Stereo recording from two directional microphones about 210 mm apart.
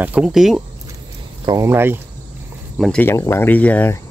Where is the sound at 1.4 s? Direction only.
15° right (ahead or behind).